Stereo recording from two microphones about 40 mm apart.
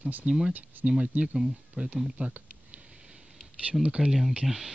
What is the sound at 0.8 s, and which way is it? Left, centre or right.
Speech, right.